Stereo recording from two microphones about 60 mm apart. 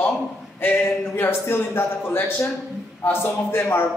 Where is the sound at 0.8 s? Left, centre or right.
Left.